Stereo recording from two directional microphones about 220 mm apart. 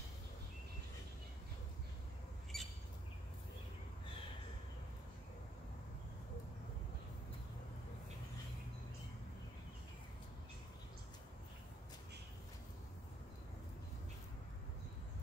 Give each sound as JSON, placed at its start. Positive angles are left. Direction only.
{"t": 2.5, "sound": "squawk", "side_deg": 0}